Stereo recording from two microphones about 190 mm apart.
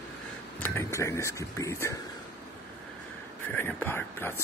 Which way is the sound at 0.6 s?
15° left (ahead or behind).